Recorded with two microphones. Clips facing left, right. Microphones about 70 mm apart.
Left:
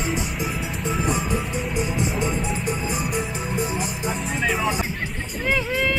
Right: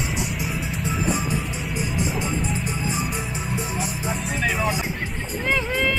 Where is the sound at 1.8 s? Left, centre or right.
Left.